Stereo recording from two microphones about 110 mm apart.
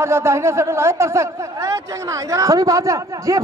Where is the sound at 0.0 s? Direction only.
25° right (ahead or behind).